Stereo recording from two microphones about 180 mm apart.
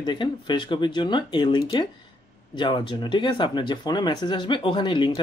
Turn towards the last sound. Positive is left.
turn(degrees=25)  # may be behind; listen again after turning